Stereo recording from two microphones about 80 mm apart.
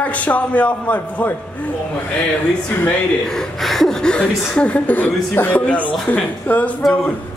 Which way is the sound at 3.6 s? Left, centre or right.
Centre.